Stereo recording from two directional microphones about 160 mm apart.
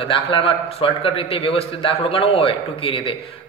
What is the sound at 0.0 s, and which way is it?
A man's voice, 35° left (ahead or behind).